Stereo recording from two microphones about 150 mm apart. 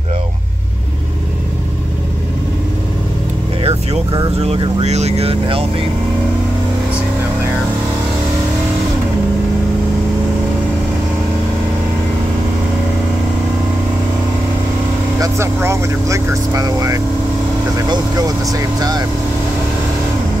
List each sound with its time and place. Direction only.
3.6 s vehicle: 40° right (ahead or behind)
4.4 s speech: 45° right (ahead or behind)
15.1 s speech: 20° right (ahead or behind)
18.5 s speech: 25° right (ahead or behind)